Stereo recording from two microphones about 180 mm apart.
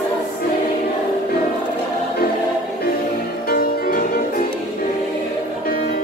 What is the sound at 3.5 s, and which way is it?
Music, 50° left (ahead or behind).